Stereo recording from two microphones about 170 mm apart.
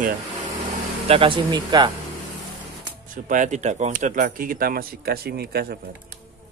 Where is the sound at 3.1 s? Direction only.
50° right (ahead or behind); by 5.8 s 65° right (ahead or behind).